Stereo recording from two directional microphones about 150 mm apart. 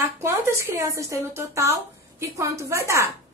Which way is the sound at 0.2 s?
15° right (ahead or behind).